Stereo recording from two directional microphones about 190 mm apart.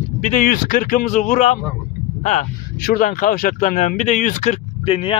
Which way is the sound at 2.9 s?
45° left (ahead or behind).